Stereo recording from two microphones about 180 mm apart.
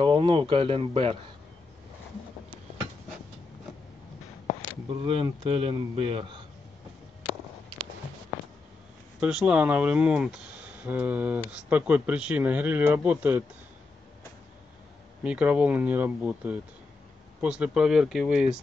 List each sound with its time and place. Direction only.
0.0 s a man's voice: 25° right (ahead or behind)
4.8 s a man's voice: 30° right (ahead or behind)
9.2 s speech: 5° right (ahead or behind)
15.2 s speech: 5° right (ahead or behind)